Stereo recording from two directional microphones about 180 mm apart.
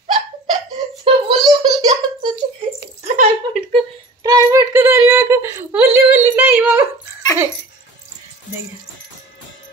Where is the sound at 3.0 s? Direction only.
40° right (ahead or behind).